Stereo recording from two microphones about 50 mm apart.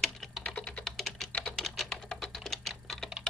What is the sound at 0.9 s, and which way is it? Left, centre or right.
Typing, centre.